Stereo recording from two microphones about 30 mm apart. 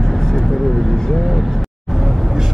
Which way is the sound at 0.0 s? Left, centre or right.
Centre.